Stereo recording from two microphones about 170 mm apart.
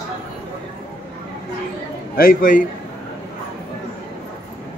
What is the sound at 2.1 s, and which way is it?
Speech, 55° left (ahead or behind).